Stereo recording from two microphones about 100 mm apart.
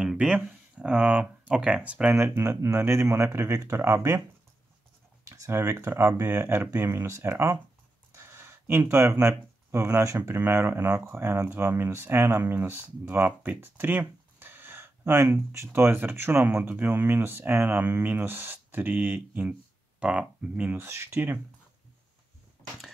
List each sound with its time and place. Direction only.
0.0 s speech: 10° right (ahead or behind)
2.1 s speech: 25° right (ahead or behind)
5.3 s speech: 30° right (ahead or behind)
8.1 s a sound: 25° right (ahead or behind)
9.7 s speech: 30° right (ahead or behind)
20.7 s speech: 25° right (ahead or behind)